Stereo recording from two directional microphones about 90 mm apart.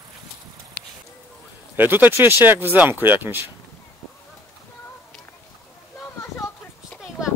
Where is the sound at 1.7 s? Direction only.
20° right (ahead or behind).